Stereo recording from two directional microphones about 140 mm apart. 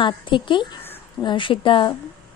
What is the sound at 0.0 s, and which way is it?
Speech, 35° left (ahead or behind).